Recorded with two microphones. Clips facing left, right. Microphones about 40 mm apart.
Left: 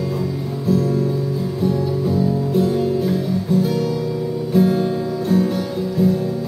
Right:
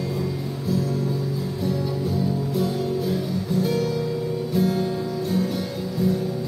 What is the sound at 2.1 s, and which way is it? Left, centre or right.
Music, left.